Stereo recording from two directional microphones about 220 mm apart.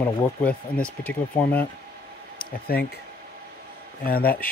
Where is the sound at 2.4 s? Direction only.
45° left (ahead or behind).